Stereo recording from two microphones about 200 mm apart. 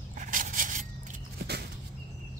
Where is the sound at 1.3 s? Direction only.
55° right (ahead or behind).